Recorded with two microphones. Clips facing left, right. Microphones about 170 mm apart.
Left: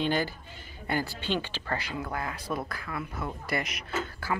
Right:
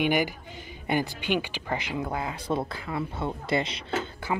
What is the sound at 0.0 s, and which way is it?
A man's voice, 15° right (ahead or behind).